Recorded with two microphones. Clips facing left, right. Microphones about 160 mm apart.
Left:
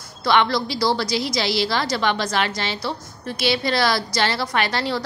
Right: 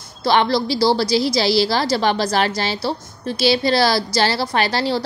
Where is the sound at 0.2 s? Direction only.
30° right (ahead or behind).